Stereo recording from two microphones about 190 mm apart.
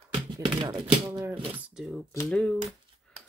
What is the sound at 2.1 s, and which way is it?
Speech, 15° left (ahead or behind).